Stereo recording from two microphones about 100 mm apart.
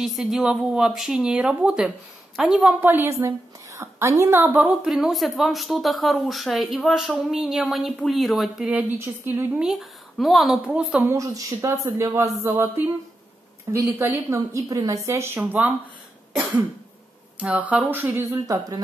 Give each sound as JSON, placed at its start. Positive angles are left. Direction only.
{"t": 0.0, "sound": "speech", "side_deg": -5}
{"t": 2.8, "sound": "a woman's voice", "side_deg": -20}
{"t": 4.8, "sound": "speech", "side_deg": -5}
{"t": 8.8, "sound": "a woman's voice", "side_deg": -20}
{"t": 9.6, "sound": "speech", "side_deg": -5}
{"t": 11.1, "sound": "a woman's voice", "side_deg": -35}
{"t": 17.4, "sound": "speech", "side_deg": -15}